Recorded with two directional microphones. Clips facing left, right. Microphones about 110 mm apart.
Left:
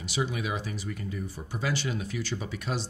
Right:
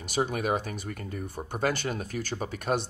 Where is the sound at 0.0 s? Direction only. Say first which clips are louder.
Right 3 dB; 45° right (ahead or behind).